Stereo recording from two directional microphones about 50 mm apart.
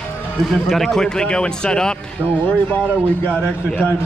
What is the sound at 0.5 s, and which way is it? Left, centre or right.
Speech, centre.